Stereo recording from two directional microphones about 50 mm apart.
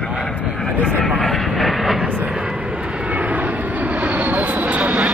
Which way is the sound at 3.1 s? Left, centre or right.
Right.